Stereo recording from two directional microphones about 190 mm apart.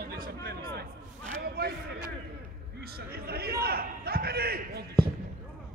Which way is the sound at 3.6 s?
55° right (ahead or behind).